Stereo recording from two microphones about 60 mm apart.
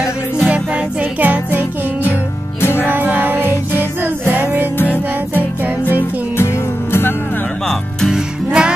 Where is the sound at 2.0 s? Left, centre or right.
Left.